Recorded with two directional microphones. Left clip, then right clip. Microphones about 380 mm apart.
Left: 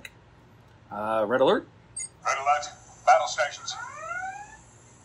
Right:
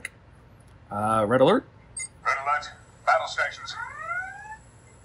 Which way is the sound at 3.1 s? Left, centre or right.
Centre.